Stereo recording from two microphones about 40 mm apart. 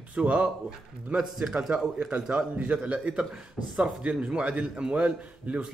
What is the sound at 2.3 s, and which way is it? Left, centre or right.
A man's voice, right.